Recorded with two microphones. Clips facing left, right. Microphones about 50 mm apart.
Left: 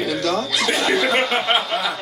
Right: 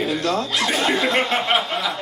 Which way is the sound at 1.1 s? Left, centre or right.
Centre.